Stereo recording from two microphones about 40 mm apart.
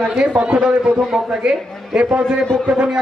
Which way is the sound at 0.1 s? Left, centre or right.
Right.